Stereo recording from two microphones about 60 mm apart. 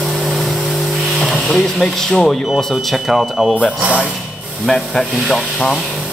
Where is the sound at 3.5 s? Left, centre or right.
Centre.